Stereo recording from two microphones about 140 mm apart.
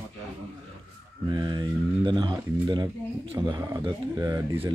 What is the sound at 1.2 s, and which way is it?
Speech, 30° right (ahead or behind).